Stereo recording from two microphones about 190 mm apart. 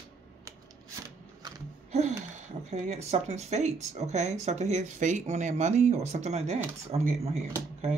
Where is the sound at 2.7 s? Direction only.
35° right (ahead or behind).